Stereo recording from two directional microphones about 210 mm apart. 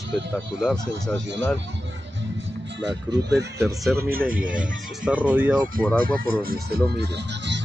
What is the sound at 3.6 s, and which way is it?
Speech, centre (ahead or behind).